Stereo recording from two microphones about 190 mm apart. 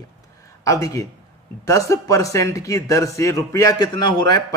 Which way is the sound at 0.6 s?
15° left (ahead or behind).